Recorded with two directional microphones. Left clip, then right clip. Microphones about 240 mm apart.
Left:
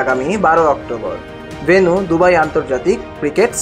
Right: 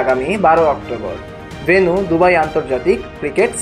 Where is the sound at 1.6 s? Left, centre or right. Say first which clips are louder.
Left 1 dB; centre.